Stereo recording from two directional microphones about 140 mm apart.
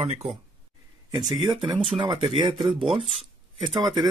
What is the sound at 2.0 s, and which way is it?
Speech, 40° right (ahead or behind).